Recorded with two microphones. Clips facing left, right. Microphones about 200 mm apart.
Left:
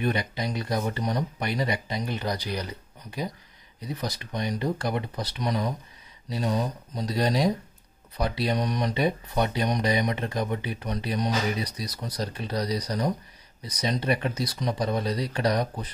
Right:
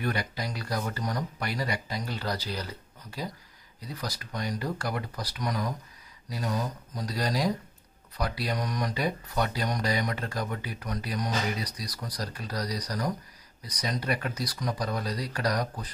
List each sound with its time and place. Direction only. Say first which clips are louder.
0.0 s speech: left 4 dB; 20° left (ahead or behind)